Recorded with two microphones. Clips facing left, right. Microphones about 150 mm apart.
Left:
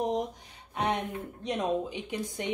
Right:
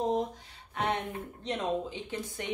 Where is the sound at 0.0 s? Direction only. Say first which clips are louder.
Even; 15° left (ahead or behind).